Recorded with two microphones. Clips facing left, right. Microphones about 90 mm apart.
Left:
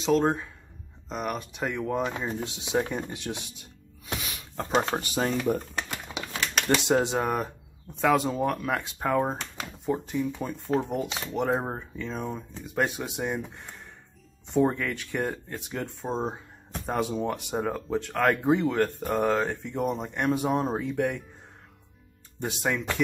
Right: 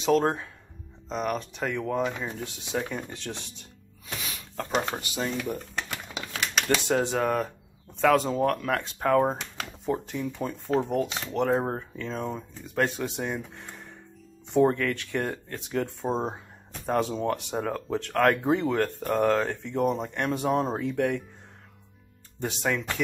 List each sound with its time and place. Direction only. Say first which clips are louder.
0.0 s speech: even; centre (ahead or behind)
4.7 s speech: left 3 dB; 40° left (ahead or behind)
6.1 s typewriter: left 2 dB; 20° left (ahead or behind)
6.8 s speech: left 1 dB; 20° left (ahead or behind)
22.4 s speech: even; 5° left (ahead or behind)